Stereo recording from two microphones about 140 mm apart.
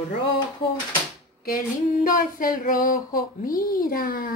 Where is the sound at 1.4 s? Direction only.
90° left.